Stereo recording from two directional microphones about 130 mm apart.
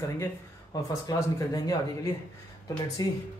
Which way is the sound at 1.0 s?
30° left (ahead or behind).